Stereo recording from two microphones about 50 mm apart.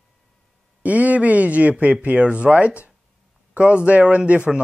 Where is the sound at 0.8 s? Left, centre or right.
Right.